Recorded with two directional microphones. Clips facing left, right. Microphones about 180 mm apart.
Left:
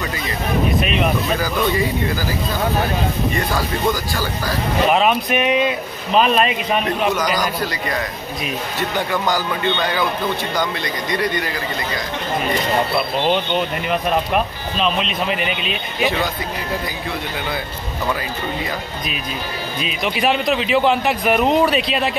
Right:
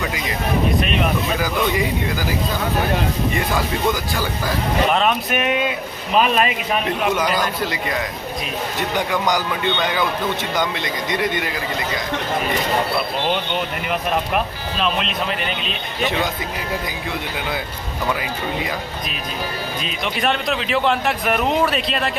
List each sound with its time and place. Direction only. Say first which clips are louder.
0.7 s speech: left 1 dB; centre (ahead or behind)
4.2 s speech: even; 5° left (ahead or behind)
9.3 s speech: left 1 dB; 15° right (ahead or behind)
13.2 s speech: left 3 dB; centre (ahead or behind)
19.8 s speech: left 4 dB; centre (ahead or behind)